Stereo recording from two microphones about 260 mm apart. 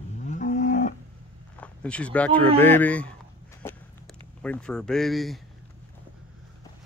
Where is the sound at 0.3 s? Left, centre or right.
Left.